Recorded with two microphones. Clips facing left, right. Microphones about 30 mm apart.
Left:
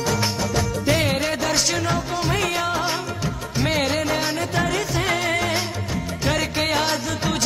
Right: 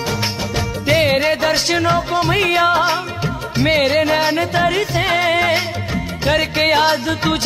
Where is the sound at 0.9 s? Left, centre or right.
Right.